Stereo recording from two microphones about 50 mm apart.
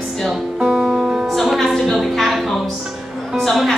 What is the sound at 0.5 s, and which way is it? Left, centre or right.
Speech, centre.